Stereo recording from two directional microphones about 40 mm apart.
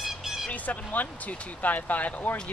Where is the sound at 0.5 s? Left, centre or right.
Left.